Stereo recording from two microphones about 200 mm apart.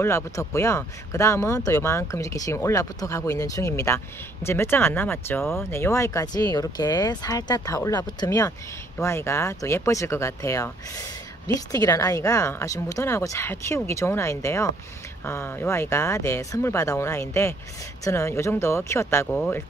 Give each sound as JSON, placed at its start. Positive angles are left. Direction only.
{"t": 0.0, "sound": "speech", "side_deg": 15}